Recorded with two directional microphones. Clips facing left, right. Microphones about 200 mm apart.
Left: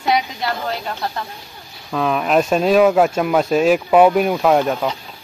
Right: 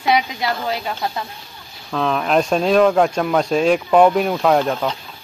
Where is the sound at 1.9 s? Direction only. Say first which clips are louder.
Left 1 dB; 5° left (ahead or behind).